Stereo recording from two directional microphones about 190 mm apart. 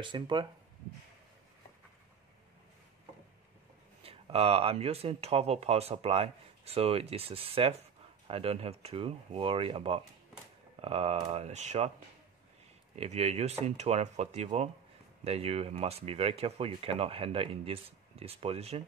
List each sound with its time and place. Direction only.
0.0 s speech: 25° right (ahead or behind)
4.0 s speech: 30° right (ahead or behind)
12.9 s speech: 35° right (ahead or behind)